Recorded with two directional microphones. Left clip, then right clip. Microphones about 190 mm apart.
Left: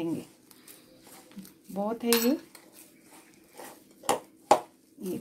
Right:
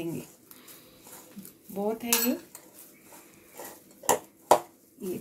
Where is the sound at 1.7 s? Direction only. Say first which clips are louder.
Left 2 dB; 35° left (ahead or behind).